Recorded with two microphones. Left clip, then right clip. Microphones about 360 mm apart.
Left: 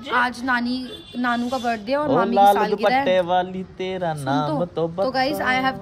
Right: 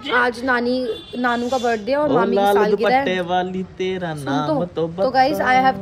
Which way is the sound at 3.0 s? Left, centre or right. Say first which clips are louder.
Left 1 dB; left.